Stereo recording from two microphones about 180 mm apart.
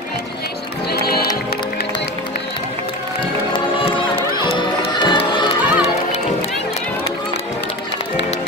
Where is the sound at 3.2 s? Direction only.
30° left (ahead or behind).